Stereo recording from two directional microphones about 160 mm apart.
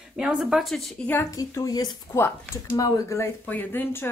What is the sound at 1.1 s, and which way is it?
A woman's voice, 20° left (ahead or behind).